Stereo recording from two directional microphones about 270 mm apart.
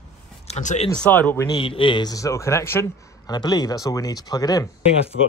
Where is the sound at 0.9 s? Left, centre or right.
Centre.